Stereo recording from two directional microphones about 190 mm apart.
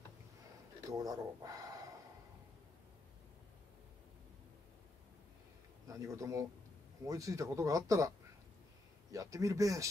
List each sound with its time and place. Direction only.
0.8 s speech: 20° right (ahead or behind)
5.9 s speech: 15° right (ahead or behind)
9.1 s speech: 15° right (ahead or behind)